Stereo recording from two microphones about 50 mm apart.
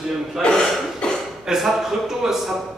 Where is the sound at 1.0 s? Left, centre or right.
Centre.